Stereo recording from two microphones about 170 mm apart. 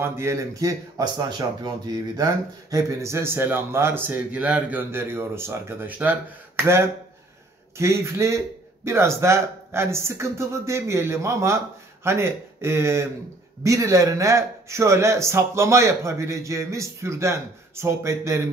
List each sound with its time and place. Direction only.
0.0 s a man's voice: 15° right (ahead or behind)
7.7 s a man's voice: 15° right (ahead or behind)